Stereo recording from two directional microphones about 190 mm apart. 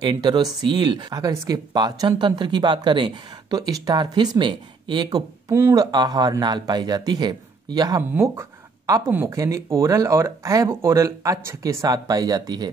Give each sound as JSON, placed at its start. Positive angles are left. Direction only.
{"t": 0.0, "sound": "speech", "side_deg": -25}